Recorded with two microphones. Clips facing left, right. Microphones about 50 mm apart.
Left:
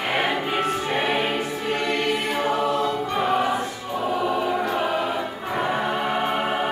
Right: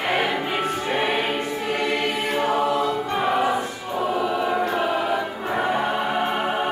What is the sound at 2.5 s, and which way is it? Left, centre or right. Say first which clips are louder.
Choir: right 1 dB; centre.